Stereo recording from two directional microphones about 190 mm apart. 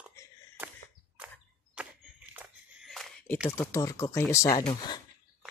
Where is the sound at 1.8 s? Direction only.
5° right (ahead or behind); by 4.6 s 20° left (ahead or behind).